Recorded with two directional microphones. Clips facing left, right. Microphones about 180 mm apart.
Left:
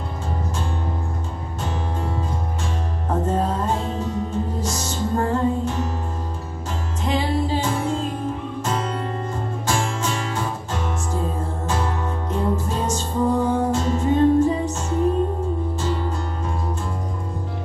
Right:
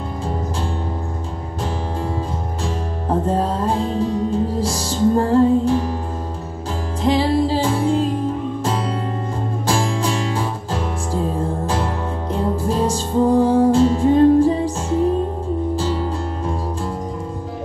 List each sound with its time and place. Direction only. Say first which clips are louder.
3.3 s music: right 1 dB; 30° right (ahead or behind)
7.0 s music: right 6 dB; 35° right (ahead or behind)
9.7 s music: right 4 dB; 30° right (ahead or behind)